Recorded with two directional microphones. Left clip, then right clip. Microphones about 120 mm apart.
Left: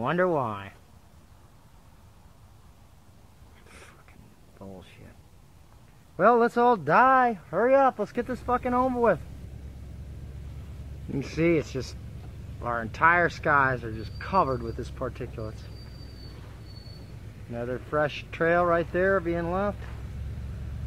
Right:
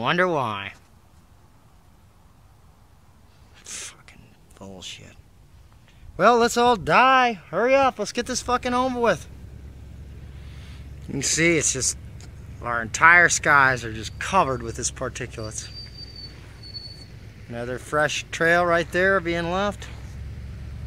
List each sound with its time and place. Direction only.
0.0 s speech: 20° right (ahead or behind)
4.6 s speech: 40° right (ahead or behind)
6.1 s speech: 35° right (ahead or behind)
11.1 s speech: 10° right (ahead or behind)
17.5 s speech: 25° right (ahead or behind)